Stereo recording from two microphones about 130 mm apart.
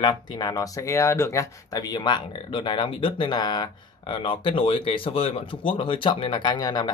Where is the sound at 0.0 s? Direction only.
30° left (ahead or behind).